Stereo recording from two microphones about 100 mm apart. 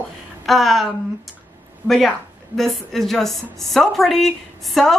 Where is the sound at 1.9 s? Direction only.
5° left (ahead or behind).